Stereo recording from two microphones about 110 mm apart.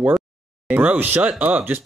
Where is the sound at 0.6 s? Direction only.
15° right (ahead or behind).